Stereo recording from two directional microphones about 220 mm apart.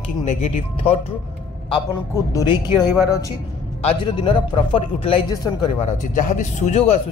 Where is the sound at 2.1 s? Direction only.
15° left (ahead or behind).